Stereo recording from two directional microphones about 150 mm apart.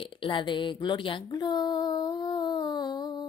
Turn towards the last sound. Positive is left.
turn(degrees=30)  # may be behind; listen again after turning